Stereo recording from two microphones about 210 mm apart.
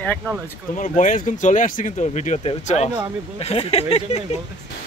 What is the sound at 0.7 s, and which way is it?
Speech, 35° left (ahead or behind).